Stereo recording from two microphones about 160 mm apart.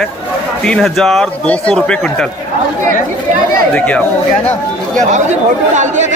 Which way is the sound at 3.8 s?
10° left (ahead or behind).